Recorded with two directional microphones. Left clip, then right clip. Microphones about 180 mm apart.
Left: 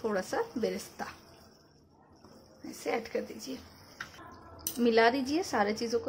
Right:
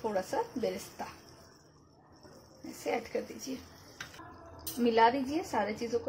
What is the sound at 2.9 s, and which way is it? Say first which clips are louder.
Speech: left 1 dB; 15° left (ahead or behind).